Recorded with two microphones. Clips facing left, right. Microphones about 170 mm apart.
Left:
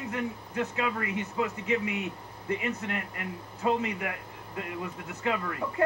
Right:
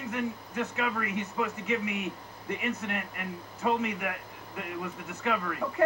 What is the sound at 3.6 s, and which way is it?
Speech, 25° left (ahead or behind).